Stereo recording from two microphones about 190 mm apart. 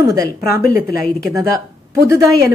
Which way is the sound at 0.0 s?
20° right (ahead or behind).